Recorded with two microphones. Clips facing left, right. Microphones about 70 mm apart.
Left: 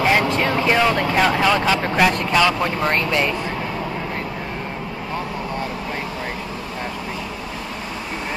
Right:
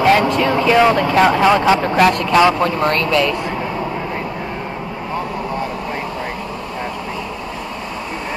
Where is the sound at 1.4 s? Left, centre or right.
Centre.